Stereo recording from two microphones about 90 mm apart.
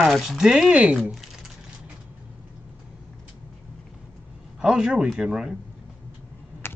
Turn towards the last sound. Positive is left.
turn(degrees=25)  # may be behind; listen again after turning